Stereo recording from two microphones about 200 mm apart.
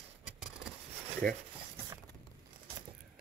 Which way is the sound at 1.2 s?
45° right (ahead or behind).